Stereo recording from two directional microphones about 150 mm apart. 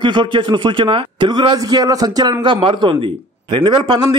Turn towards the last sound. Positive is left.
turn(degrees=-35)  # may be behind; listen again after turning